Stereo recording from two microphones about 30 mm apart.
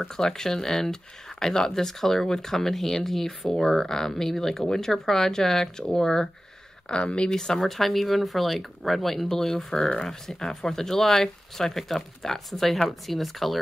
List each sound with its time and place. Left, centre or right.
0.1 s speech: centre
7.0 s speech: left
7.2 s speech: left
7.6 s speech: centre
9.3 s speech: centre